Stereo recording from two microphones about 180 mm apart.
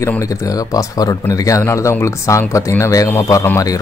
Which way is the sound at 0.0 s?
15° left (ahead or behind).